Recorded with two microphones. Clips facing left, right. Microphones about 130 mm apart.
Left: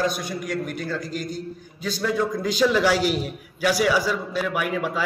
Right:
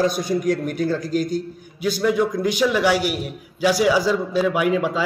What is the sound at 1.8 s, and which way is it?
A man's voice, 10° right (ahead or behind).